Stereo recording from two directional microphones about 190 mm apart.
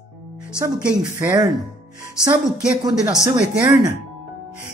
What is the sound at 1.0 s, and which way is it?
Speech, 20° right (ahead or behind).